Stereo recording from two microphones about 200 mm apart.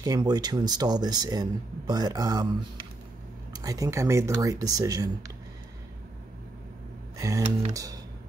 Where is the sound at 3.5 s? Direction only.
15° right (ahead or behind).